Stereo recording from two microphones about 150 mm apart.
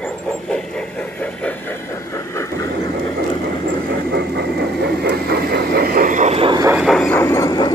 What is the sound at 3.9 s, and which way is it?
Engine, 90° right.